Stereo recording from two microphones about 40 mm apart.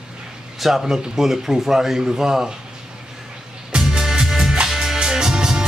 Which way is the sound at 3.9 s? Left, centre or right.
Centre.